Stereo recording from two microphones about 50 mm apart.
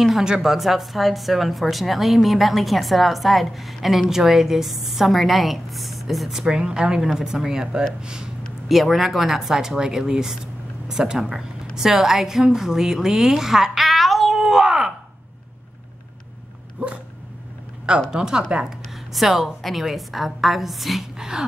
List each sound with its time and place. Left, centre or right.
0.2 s speech: centre
0.5 s a woman's voice: centre
8.6 s a woman's voice: centre
12.4 s a sound: centre
16.8 s dog: right
18.1 s speech: centre
19.1 s a woman's voice: centre